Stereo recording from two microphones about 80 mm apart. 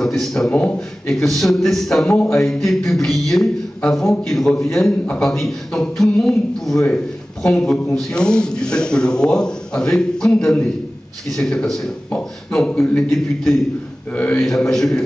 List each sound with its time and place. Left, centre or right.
0.0 s speech: centre
1.2 s a man's voice: centre
14.1 s a man's voice: centre
14.4 s speech: centre